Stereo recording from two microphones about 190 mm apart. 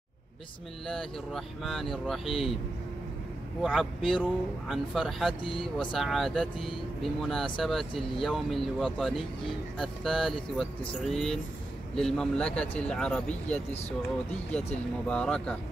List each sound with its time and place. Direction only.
0.8 s speech: centre (ahead or behind)
3.6 s speech: centre (ahead or behind)
15.0 s speech: 5° left (ahead or behind)